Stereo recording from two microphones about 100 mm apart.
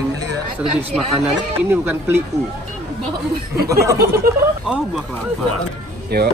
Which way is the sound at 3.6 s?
35° right (ahead or behind).